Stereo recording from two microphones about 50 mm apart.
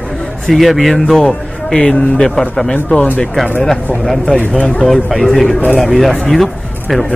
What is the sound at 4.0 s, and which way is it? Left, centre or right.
Speech, centre.